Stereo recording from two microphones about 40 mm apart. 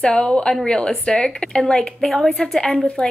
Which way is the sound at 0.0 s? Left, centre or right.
Left.